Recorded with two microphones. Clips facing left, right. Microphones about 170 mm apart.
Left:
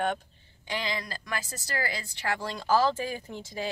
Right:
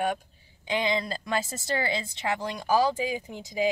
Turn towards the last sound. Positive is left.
turn(degrees=-15)  # may be behind; listen again after turning